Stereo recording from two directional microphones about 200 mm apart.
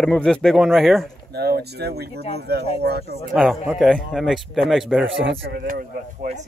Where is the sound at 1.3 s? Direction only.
55° right (ahead or behind).